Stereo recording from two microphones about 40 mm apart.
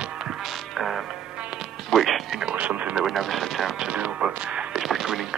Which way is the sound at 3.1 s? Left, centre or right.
Centre.